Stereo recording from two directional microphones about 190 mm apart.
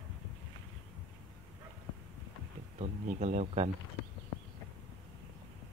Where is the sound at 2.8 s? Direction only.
40° right (ahead or behind).